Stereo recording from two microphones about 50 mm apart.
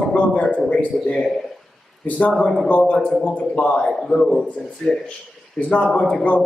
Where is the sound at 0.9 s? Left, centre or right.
Centre.